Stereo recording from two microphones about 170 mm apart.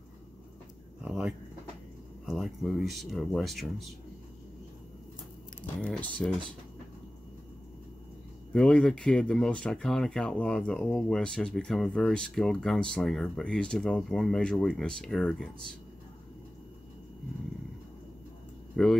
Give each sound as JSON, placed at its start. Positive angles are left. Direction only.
{"t": 1.0, "sound": "speech", "side_deg": -5}
{"t": 5.8, "sound": "speech", "side_deg": 10}
{"t": 8.5, "sound": "speech", "side_deg": 5}
{"t": 18.8, "sound": "speech", "side_deg": 5}